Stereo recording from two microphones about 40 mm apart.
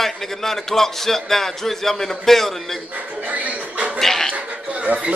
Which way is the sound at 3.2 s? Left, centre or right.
Right.